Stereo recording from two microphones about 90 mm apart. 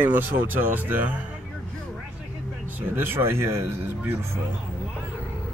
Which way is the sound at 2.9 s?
25° right (ahead or behind).